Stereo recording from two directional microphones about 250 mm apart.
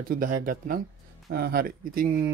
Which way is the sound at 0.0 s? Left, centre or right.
Right.